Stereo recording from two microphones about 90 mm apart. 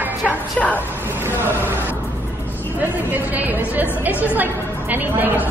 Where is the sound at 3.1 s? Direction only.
20° right (ahead or behind).